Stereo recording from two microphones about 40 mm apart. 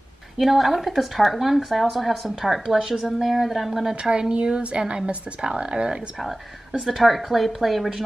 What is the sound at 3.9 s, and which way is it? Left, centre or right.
Speech, right.